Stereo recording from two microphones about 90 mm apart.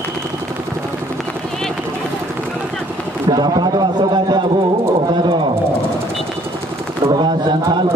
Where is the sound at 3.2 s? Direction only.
55° right (ahead or behind).